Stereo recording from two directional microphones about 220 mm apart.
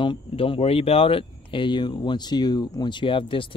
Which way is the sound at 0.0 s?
25° left (ahead or behind).